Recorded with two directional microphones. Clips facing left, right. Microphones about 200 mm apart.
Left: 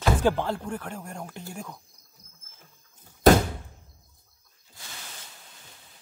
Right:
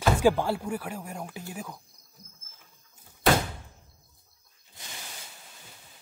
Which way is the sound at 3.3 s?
40° left (ahead or behind).